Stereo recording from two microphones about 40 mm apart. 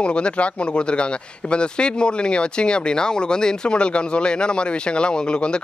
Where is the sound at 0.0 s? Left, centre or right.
Left.